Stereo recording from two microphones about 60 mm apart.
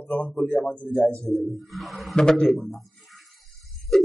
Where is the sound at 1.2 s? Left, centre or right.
Centre.